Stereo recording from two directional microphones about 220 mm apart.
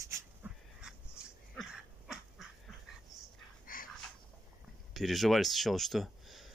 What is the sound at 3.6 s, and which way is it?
Dog, 40° left (ahead or behind).